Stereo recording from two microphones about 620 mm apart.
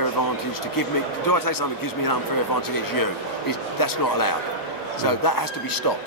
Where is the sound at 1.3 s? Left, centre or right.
Left.